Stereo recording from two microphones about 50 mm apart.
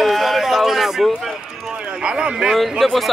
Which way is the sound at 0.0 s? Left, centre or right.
Centre.